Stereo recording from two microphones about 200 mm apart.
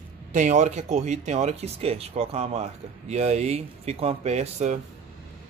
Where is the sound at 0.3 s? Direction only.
40° right (ahead or behind).